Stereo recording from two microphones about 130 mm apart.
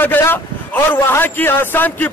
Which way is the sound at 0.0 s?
15° left (ahead or behind).